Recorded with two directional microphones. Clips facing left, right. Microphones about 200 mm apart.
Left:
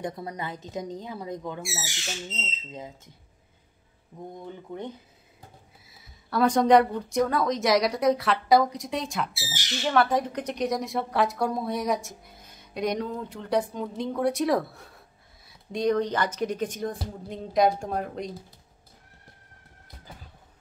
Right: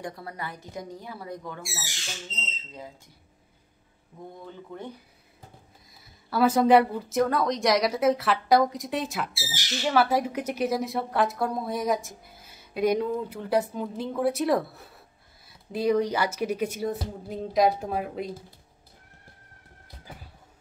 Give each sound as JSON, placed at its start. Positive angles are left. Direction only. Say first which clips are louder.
{"t": 0.0, "sound": "speech", "louder": "left 3 dB", "side_deg": 20}
{"t": 4.1, "sound": "speech", "louder": "left 2 dB", "side_deg": 20}
{"t": 5.9, "sound": "speech", "louder": "even", "side_deg": 0}